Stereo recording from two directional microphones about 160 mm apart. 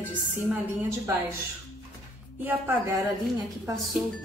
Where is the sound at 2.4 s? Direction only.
15° right (ahead or behind).